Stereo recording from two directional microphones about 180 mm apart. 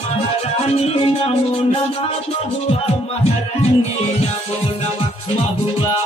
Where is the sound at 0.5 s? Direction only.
35° left (ahead or behind).